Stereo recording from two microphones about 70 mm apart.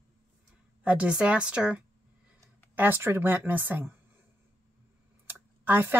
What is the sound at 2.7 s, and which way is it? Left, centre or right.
Speech, right.